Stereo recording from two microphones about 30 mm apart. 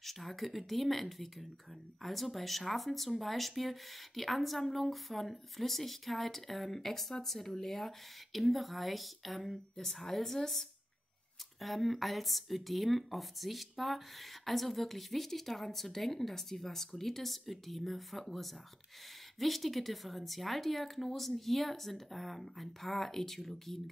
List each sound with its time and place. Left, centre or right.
0.0 s speech: centre